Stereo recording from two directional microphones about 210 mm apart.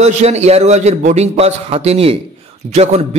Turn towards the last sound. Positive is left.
turn(degrees=-30)  # may be behind; listen again after turning